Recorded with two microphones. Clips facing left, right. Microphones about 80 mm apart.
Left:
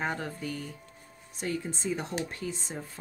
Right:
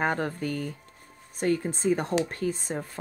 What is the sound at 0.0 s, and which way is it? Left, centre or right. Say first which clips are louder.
Speech: right 6 dB; right.